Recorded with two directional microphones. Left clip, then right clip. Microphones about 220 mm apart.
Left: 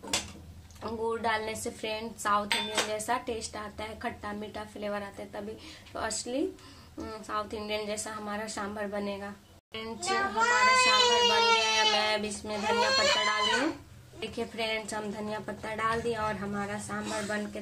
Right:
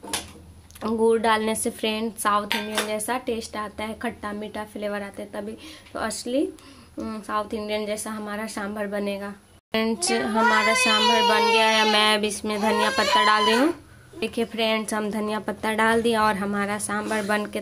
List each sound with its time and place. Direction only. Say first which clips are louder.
0.7 s child singing: right 12 dB; 50° right (ahead or behind)
2.7 s speech: right 4 dB; 35° right (ahead or behind)
9.7 s child singing: right 9 dB; 55° right (ahead or behind)
14.2 s a woman's voice: right 9 dB; 40° right (ahead or behind); by 17.4 s 65° right (ahead or behind)